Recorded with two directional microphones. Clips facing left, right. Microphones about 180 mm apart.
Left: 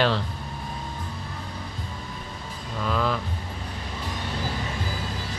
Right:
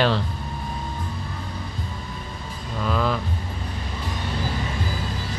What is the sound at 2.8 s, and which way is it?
Music, 5° right (ahead or behind).